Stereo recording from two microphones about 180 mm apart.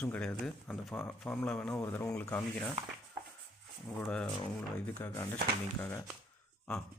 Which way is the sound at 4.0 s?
10° left (ahead or behind).